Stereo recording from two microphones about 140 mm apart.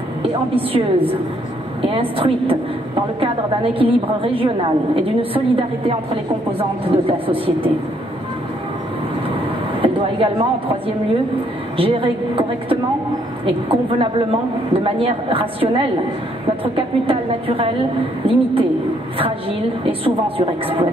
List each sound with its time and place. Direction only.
0.6 s a woman's voice: 40° right (ahead or behind)
3.7 s a woman's voice: 40° right (ahead or behind)
6.8 s a woman's voice: 40° right (ahead or behind)
9.3 s vehicle: 40° right (ahead or behind)
11.7 s a woman's voice: 40° right (ahead or behind)
19.8 s a woman's voice: 40° right (ahead or behind)